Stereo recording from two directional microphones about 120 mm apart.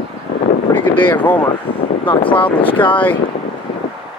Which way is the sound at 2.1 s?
45° left (ahead or behind).